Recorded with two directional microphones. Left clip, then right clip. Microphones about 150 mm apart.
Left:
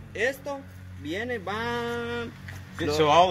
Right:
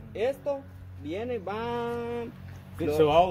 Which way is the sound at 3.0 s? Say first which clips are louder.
Left 2 dB; 30° right (ahead or behind).